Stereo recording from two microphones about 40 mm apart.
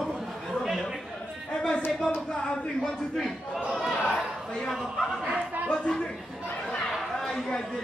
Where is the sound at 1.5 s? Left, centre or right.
Left.